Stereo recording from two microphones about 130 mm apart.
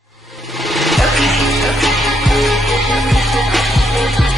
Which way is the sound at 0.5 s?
Centre (ahead or behind).